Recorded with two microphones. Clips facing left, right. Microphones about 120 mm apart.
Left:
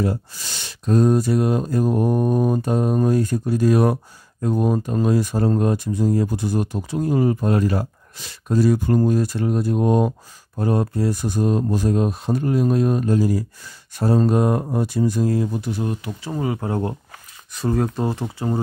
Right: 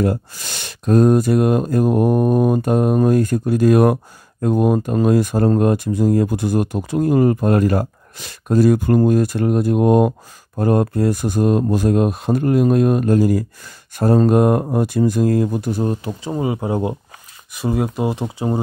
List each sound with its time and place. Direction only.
0.0 s speech: 55° right (ahead or behind)
15.7 s speech: 35° right (ahead or behind)
16.3 s speech: 20° right (ahead or behind)